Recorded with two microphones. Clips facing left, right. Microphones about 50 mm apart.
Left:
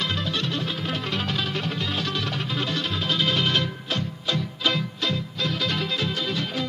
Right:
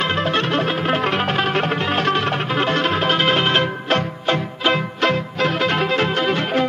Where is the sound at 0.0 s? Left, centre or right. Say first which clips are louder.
Right 8 dB; right.